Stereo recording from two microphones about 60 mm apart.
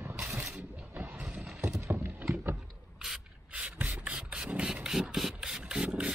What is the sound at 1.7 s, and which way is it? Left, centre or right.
Horse, right.